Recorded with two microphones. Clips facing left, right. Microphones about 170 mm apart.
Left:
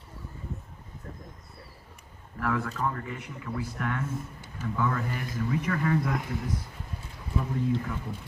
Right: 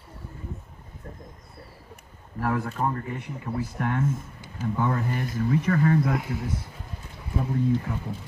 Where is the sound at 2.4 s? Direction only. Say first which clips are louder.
Right 3 dB; 30° right (ahead or behind).